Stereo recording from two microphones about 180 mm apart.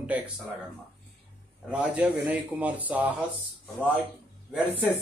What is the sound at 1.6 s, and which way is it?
Speech, 5° right (ahead or behind).